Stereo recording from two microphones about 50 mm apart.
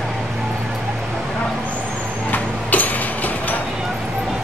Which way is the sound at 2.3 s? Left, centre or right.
Left.